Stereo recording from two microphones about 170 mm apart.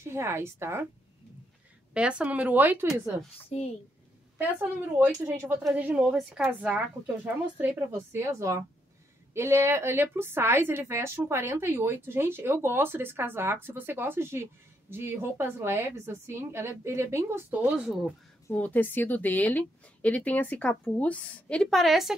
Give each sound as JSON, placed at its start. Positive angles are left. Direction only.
{"t": 0.0, "sound": "a woman's voice", "side_deg": -15}
{"t": 2.0, "sound": "a woman's voice", "side_deg": -5}
{"t": 3.4, "sound": "a woman's voice", "side_deg": 40}
{"t": 4.4, "sound": "a woman's voice", "side_deg": -10}
{"t": 18.5, "sound": "a woman's voice", "side_deg": 10}